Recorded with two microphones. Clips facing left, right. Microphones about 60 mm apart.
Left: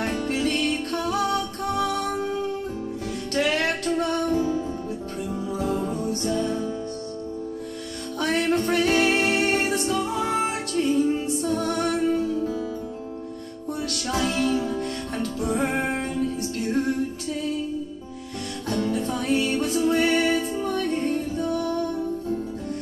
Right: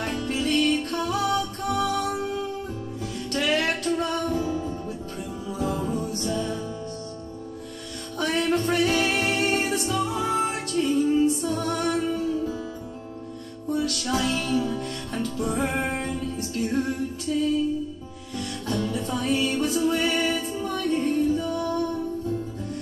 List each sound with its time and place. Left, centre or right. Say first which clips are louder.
0.0 s music: left 2 dB; left
8.2 s music: left 1 dB; left
13.7 s music: right 3 dB; left
18.7 s music: left 3 dB; left